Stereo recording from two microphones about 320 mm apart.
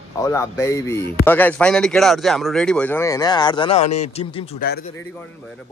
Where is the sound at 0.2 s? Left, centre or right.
Centre.